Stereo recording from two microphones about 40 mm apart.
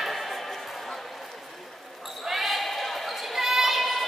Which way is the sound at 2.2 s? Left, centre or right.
Centre.